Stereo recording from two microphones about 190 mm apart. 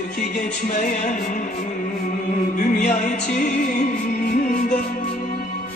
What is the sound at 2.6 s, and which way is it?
Music, 40° left (ahead or behind).